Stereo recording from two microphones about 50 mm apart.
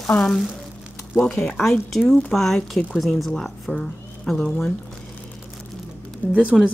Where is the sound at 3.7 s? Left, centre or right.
Centre.